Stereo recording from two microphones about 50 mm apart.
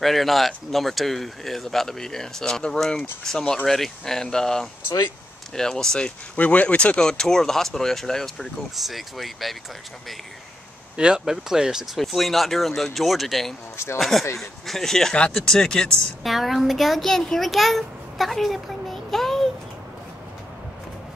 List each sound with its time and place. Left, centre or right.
0.0 s speech: centre
6.3 s speech: left
7.0 s speech: centre
11.0 s speech: centre
16.2 s a child's voice: centre